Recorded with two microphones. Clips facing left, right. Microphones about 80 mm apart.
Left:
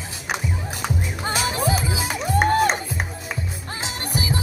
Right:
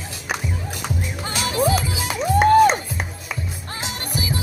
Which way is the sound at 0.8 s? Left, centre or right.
Left.